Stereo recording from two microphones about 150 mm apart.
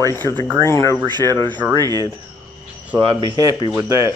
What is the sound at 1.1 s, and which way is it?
Speech, 30° right (ahead or behind).